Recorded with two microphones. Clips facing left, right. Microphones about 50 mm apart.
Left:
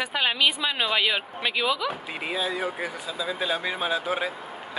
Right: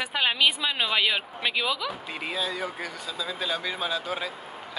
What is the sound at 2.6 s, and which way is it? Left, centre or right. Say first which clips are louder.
Speech: left 3 dB; left.